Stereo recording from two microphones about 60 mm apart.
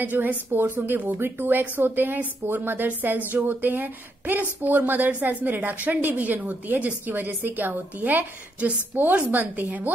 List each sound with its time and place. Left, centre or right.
0.0 s a woman's voice: right